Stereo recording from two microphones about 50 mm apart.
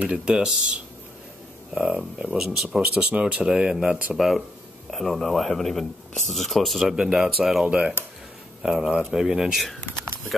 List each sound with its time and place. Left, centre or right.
0.0 s speech: right
1.7 s speech: centre
2.3 s speech: centre
2.8 s speech: right; by 7.6 s centre
7.6 s speech: right
8.6 s speech: centre